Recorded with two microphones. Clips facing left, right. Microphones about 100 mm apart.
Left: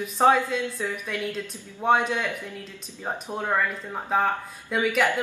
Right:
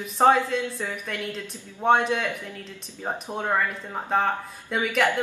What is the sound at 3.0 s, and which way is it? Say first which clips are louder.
Speech: even; 15° right (ahead or behind).